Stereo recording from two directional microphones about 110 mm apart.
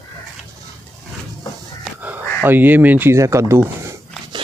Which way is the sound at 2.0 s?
20° right (ahead or behind).